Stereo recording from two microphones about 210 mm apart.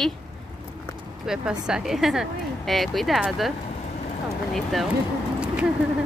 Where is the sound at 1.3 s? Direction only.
Centre (ahead or behind).